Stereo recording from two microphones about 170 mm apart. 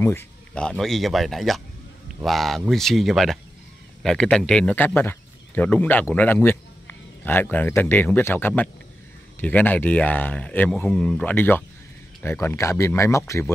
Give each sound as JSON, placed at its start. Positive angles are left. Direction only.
{"t": 0.0, "sound": "speech", "side_deg": 10}